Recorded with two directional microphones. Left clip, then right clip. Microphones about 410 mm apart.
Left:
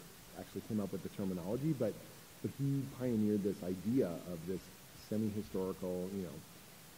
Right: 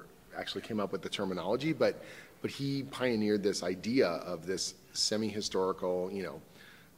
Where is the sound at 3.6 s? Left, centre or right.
Centre.